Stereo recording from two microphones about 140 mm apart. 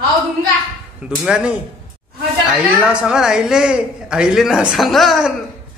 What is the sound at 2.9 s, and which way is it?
A woman's voice, 5° right (ahead or behind).